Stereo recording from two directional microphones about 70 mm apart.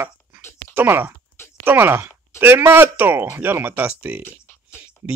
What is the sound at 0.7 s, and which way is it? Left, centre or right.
Speech, right.